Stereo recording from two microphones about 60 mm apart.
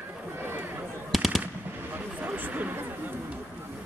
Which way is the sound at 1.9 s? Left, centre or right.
Right.